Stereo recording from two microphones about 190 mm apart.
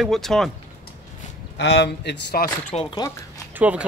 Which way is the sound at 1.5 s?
65° left (ahead or behind).